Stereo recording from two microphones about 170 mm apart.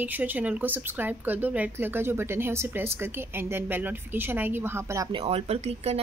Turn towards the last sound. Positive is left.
turn(degrees=-40)  # may be behind; listen again after turning